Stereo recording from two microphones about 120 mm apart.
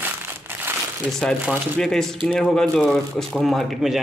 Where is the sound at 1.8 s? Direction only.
5° left (ahead or behind).